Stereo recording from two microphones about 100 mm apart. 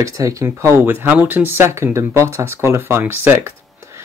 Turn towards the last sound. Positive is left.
turn(degrees=-20)  # may be behind; listen again after turning